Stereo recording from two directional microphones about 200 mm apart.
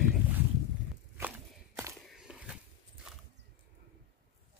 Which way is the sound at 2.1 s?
Centre (ahead or behind).